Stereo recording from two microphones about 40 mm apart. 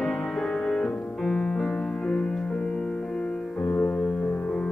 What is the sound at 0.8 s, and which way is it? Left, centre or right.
Music, left.